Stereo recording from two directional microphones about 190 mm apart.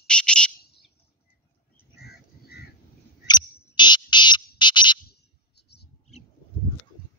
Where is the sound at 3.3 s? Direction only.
20° left (ahead or behind).